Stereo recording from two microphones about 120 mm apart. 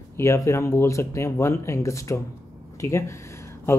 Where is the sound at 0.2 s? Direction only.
25° left (ahead or behind).